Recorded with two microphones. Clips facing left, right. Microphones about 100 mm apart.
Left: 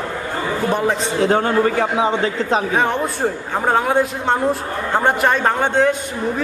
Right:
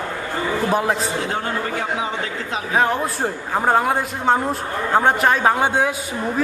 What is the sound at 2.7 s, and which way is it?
A man's voice, centre (ahead or behind).